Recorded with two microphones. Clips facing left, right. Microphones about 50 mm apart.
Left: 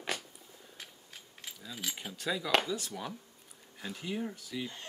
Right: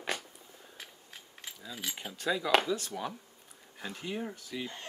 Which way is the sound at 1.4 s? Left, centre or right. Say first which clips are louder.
Even; centre.